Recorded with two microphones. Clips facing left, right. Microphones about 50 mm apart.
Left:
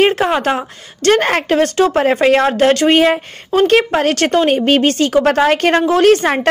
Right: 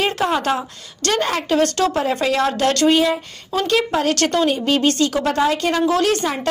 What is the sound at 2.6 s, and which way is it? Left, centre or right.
Speech, left.